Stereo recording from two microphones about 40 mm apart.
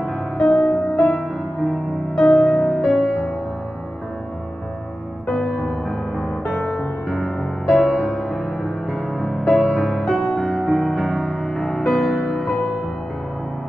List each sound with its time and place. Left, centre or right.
0.0 s music: centre
5.3 s music: centre
8.4 s music: centre